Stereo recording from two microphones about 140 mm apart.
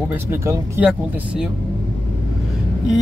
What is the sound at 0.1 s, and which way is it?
Speech, 15° right (ahead or behind).